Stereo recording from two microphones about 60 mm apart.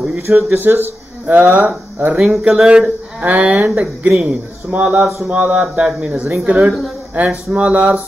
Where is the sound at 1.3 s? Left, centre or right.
Right.